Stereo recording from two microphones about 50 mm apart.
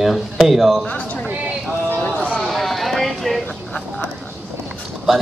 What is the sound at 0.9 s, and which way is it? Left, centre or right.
Speech, left.